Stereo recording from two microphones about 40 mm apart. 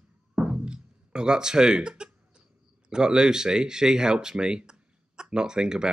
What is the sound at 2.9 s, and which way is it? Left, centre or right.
Speech, centre.